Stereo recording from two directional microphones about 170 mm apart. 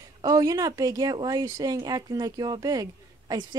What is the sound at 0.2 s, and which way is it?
Speech, 20° right (ahead or behind).